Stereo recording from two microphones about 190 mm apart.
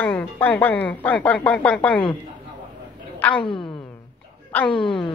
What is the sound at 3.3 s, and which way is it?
Speech, 25° left (ahead or behind).